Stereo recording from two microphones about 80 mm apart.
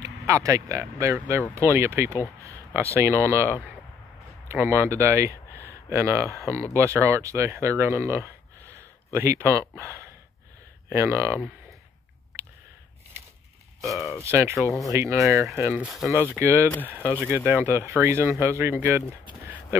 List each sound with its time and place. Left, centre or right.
0.0 s speech: right
13.8 s speech: centre
14.2 s speech: right